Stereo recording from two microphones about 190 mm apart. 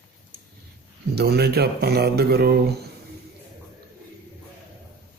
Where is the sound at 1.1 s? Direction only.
55° right (ahead or behind).